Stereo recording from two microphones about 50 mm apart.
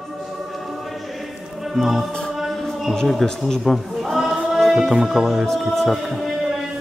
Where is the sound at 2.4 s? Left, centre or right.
Centre.